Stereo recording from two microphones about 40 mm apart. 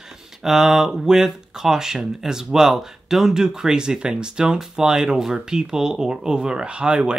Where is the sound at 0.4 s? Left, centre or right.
Centre.